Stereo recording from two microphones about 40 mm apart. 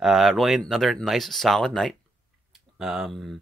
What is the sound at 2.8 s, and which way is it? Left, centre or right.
Speech, centre.